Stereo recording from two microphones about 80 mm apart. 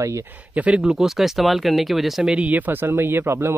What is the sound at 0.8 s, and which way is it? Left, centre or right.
Speech, centre.